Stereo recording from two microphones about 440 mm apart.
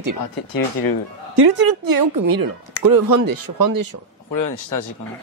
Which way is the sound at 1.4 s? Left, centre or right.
Right.